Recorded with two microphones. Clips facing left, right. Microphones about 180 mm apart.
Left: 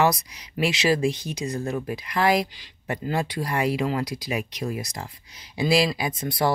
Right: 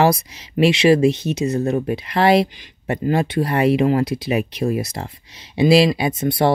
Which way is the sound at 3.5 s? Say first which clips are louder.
Right 8 dB; 65° right (ahead or behind).